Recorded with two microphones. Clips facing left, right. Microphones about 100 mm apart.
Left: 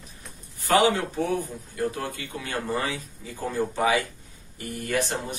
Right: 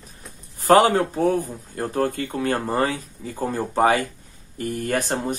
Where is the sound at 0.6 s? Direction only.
40° right (ahead or behind).